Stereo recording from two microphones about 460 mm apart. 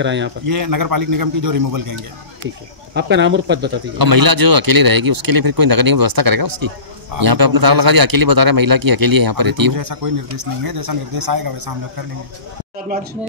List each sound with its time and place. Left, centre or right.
0.0 s speech: right
0.6 s a man's voice: right
2.9 s speech: right
4.0 s a man's voice: right